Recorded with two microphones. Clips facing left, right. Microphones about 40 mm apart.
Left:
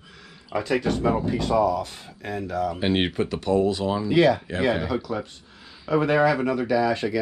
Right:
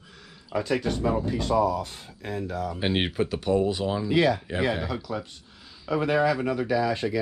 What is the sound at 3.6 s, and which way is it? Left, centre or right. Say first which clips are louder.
Speech: left 3 dB; centre.